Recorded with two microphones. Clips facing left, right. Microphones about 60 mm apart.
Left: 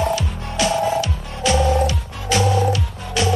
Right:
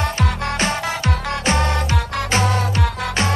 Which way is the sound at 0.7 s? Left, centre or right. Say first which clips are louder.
Left 5 dB; right.